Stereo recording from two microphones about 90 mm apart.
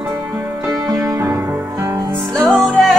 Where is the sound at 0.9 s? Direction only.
40° right (ahead or behind).